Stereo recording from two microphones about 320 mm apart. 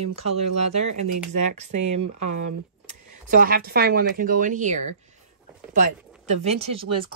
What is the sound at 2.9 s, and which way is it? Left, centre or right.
Speech, right.